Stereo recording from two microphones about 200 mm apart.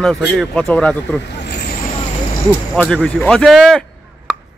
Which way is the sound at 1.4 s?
55° left (ahead or behind).